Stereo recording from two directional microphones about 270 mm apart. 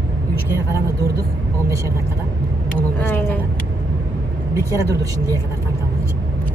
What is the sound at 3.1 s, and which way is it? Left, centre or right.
Speech, centre.